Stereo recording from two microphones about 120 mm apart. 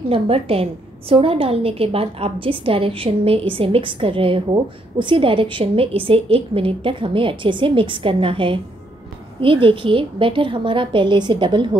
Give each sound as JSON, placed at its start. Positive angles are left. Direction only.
{"t": 0.1, "sound": "a woman's voice", "side_deg": -55}